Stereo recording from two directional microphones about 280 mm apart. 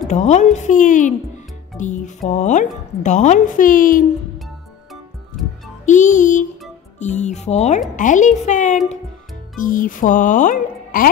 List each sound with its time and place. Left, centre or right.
0.1 s speech: left
5.4 s music: centre
5.9 s speech: left